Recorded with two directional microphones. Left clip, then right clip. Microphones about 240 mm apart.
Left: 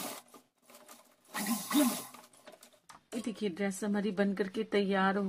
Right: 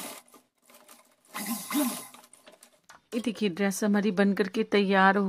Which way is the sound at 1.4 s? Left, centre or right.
Centre.